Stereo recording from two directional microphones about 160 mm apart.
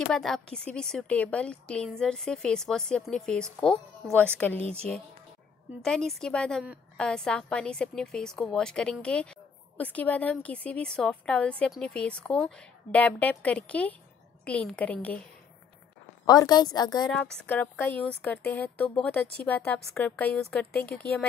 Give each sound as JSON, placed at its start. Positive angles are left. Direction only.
{"t": 0.1, "sound": "a woman's voice", "side_deg": 5}
{"t": 4.6, "sound": "speech", "side_deg": -40}
{"t": 5.8, "sound": "a woman's voice", "side_deg": 5}
{"t": 16.3, "sound": "a woman's voice", "side_deg": 25}
{"t": 17.1, "sound": "a woman's voice", "side_deg": 10}